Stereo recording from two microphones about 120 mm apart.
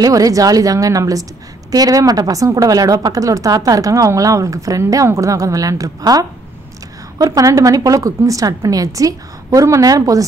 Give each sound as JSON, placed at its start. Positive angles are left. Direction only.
{"t": 0.0, "sound": "a woman's voice", "side_deg": -30}